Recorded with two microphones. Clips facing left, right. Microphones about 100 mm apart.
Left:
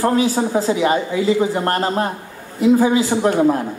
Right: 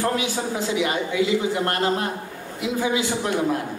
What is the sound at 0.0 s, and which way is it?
A man's voice, 35° left (ahead or behind).